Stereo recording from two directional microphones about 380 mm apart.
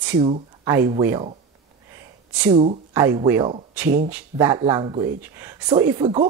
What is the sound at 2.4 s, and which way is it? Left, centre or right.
Speech, centre.